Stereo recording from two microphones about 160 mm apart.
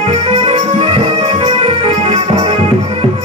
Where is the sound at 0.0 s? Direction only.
40° right (ahead or behind).